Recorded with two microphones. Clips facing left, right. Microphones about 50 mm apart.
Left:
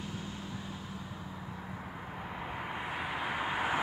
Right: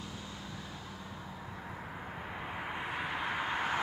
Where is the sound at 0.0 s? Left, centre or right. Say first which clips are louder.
Left 3 dB; left.